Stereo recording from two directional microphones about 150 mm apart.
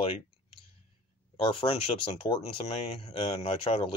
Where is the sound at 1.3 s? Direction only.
35° left (ahead or behind).